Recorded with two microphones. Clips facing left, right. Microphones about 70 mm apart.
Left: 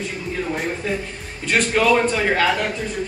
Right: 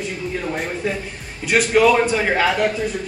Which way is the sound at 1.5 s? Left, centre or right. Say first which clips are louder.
Right 3 dB; centre.